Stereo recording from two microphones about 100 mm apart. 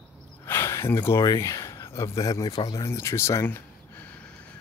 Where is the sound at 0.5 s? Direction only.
25° left (ahead or behind).